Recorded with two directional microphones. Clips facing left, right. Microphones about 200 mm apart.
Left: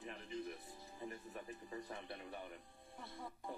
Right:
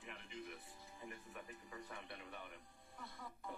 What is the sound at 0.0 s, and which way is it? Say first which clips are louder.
Music: left 7 dB; 35° left (ahead or behind).